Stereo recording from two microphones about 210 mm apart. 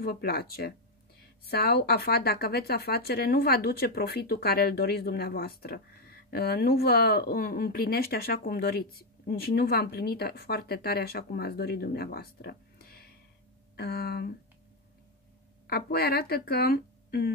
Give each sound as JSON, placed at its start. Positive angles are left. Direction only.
{"t": 0.0, "sound": "a woman's voice", "side_deg": 45}
{"t": 15.6, "sound": "speech", "side_deg": 50}